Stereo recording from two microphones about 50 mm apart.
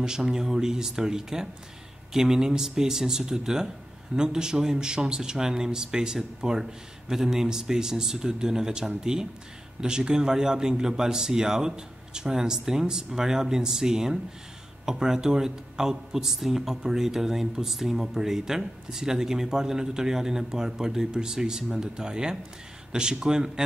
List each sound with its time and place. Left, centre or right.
0.0 s speech: centre